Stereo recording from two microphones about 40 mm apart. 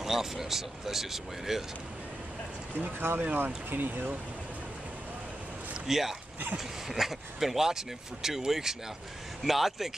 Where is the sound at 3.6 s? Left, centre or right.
Right.